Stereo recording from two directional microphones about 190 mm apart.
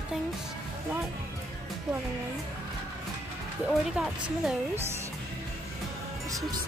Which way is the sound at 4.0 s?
5° right (ahead or behind).